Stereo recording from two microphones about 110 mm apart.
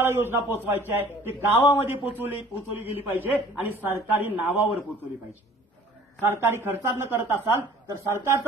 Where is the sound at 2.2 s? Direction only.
20° right (ahead or behind).